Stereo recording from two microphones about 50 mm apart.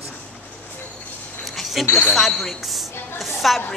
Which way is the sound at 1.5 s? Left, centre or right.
Centre.